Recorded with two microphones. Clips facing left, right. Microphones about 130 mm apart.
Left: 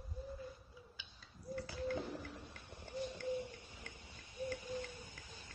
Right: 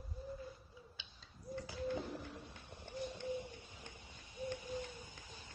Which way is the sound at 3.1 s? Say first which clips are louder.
Left 2 dB; 20° right (ahead or behind).